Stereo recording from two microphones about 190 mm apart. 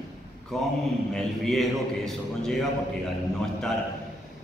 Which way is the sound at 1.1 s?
Centre (ahead or behind).